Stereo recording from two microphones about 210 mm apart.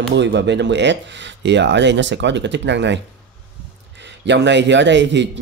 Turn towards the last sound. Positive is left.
turn(degrees=-55)  # may be behind; listen again after turning